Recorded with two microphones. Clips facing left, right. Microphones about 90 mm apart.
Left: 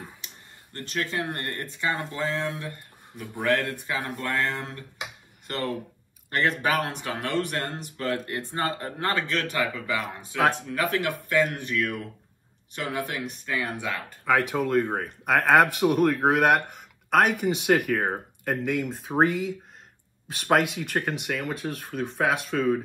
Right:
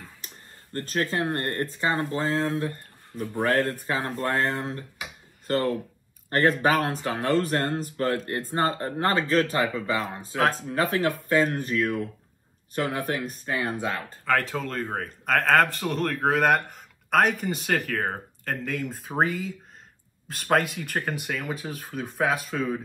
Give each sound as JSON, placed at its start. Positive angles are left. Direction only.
{"t": 0.2, "sound": "a sound", "side_deg": -45}
{"t": 0.7, "sound": "speech", "side_deg": -35}
{"t": 1.1, "sound": "speech", "side_deg": -25}
{"t": 3.2, "sound": "speech", "side_deg": -20}
{"t": 3.9, "sound": "speech", "side_deg": -35}
{"t": 4.4, "sound": "speech", "side_deg": -20}
{"t": 6.3, "sound": "speech", "side_deg": -35}
{"t": 12.7, "sound": "speech", "side_deg": -45}
{"t": 13.5, "sound": "speech", "side_deg": -30}
{"t": 14.2, "sound": "speech", "side_deg": 15}